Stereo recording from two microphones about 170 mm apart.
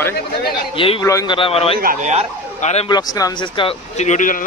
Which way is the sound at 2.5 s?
40° left (ahead or behind).